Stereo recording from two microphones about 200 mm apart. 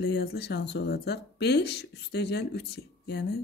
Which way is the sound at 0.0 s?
55° left (ahead or behind).